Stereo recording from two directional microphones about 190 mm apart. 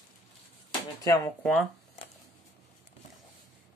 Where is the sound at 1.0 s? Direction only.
10° left (ahead or behind).